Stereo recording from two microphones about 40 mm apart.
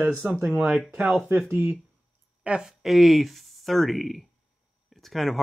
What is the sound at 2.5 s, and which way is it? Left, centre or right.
Speech, right.